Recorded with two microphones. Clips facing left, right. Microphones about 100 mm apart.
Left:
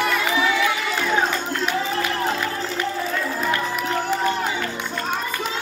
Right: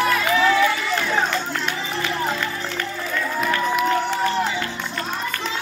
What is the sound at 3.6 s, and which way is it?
Run, centre (ahead or behind).